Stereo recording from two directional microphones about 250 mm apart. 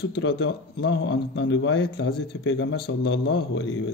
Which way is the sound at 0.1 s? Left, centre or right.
Left.